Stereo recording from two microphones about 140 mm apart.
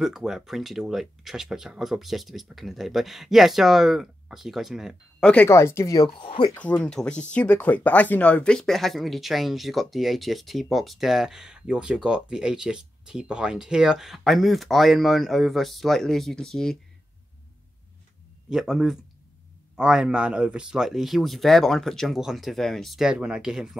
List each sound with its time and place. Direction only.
0.0 s speech: centre (ahead or behind)
5.3 s speech: 15° left (ahead or behind)
6.0 s speech: 40° left (ahead or behind)
6.8 s speech: 5° left (ahead or behind)
18.5 s speech: centre (ahead or behind)